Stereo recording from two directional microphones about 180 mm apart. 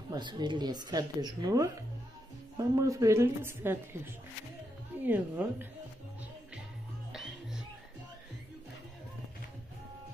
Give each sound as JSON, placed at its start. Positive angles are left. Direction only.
{"t": 0.1, "sound": "a woman's voice", "side_deg": -25}
{"t": 7.1, "sound": "music", "side_deg": 0}